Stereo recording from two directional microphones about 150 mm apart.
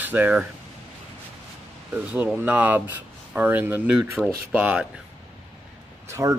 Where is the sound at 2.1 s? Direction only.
10° right (ahead or behind).